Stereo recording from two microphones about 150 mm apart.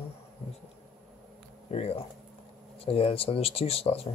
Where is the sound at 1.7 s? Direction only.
45° left (ahead or behind).